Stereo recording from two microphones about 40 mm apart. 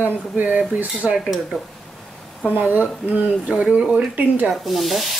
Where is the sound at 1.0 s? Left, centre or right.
Right.